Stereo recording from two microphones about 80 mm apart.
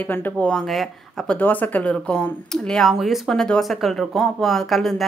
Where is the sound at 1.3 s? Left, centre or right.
Left.